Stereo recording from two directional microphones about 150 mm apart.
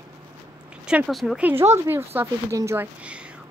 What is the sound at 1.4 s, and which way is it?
Child singing, 10° right (ahead or behind).